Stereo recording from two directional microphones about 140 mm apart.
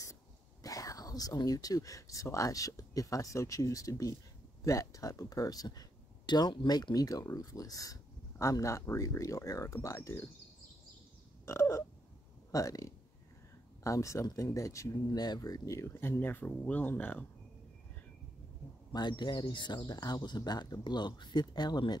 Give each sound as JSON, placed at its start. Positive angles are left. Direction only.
{"t": 0.7, "sound": "speech", "side_deg": 25}
{"t": 11.4, "sound": "speech", "side_deg": 20}
{"t": 18.9, "sound": "speech", "side_deg": 35}